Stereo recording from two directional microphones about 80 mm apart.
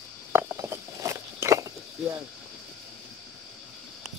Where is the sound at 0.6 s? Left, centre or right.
Right.